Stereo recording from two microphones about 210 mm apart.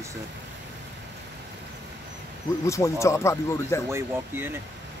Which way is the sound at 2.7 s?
15° left (ahead or behind).